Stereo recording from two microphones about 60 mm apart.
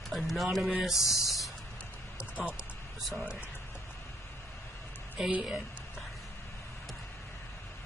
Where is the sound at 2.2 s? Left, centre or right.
Right.